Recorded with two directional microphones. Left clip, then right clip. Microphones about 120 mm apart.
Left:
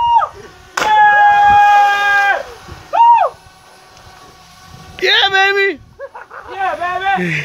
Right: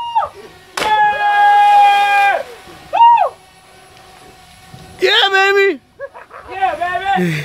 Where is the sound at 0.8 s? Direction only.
70° right (ahead or behind).